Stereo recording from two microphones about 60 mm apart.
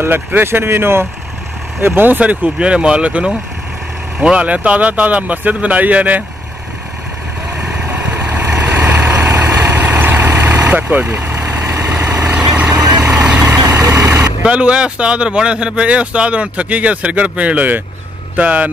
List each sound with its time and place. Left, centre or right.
0.0 s speech: right
7.5 s vehicle: centre
7.8 s vehicle: right
8.9 s vehicle: right
9.3 s vehicle: right
9.8 s vehicle: right
10.7 s speech: right
11.3 s vehicle: right
12.7 s vehicle: right
13.1 s vehicle: centre
13.7 s vehicle: right
14.4 s speech: centre